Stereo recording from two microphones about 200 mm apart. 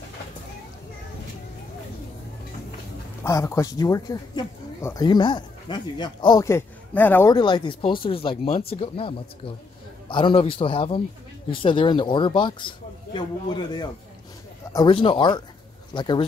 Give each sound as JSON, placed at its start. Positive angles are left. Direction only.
{"t": 3.3, "sound": "speech", "side_deg": 15}
{"t": 7.3, "sound": "speech", "side_deg": 20}